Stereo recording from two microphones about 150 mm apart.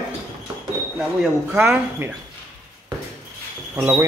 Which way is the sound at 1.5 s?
10° right (ahead or behind).